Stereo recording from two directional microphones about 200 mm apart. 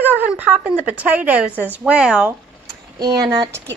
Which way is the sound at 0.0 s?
10° right (ahead or behind).